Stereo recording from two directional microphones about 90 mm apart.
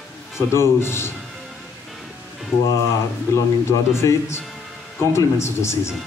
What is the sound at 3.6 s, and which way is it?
A man's voice, 30° left (ahead or behind).